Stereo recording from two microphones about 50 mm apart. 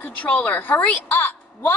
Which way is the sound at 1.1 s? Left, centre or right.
Left.